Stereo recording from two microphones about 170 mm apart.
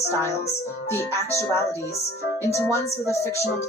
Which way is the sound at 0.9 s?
15° left (ahead or behind).